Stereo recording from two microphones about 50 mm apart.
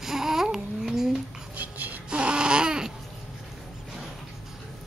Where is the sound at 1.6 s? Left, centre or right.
Right.